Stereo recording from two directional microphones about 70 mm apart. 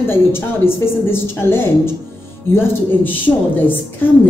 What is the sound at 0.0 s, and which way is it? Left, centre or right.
A woman's voice, left.